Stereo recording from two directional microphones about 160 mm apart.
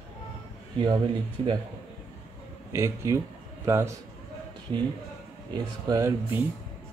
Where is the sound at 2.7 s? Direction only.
15° right (ahead or behind).